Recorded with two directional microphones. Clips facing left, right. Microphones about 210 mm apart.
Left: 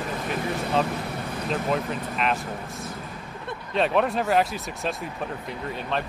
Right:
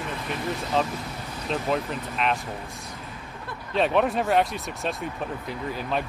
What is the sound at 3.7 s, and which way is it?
Speech, centre (ahead or behind).